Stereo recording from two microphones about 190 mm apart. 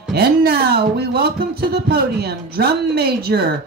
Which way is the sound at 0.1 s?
55° right (ahead or behind).